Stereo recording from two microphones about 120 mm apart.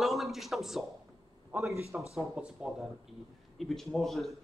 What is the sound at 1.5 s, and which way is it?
Speech, 15° right (ahead or behind).